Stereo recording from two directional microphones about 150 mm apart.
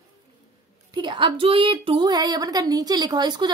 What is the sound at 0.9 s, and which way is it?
Speech, 30° right (ahead or behind).